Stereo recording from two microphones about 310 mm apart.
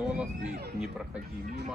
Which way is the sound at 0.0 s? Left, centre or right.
Centre.